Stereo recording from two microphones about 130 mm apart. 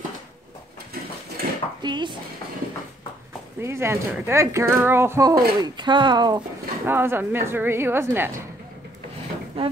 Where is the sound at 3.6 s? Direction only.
20° right (ahead or behind).